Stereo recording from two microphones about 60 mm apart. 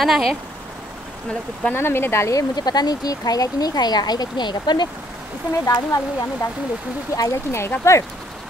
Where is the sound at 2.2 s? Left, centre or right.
Left.